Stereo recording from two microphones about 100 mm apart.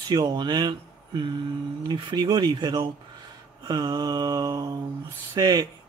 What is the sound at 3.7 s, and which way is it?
Mantra, 40° right (ahead or behind).